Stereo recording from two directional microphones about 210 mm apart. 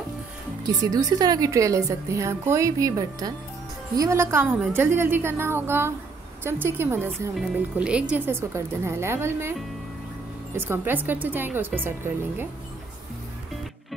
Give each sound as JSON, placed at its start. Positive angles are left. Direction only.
{"t": 0.7, "sound": "a woman's voice", "side_deg": -15}